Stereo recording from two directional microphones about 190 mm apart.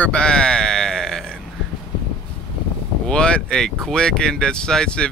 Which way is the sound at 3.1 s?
5° left (ahead or behind).